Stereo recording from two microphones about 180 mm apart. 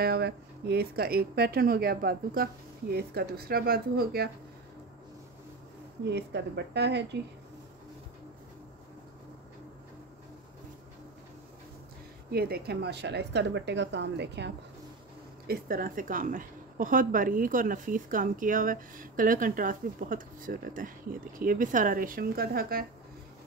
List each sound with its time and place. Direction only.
0.0 s a woman's voice: 65° right (ahead or behind)
6.0 s a woman's voice: 70° right (ahead or behind)
12.3 s a woman's voice: 60° right (ahead or behind)
15.4 s a woman's voice: 55° right (ahead or behind)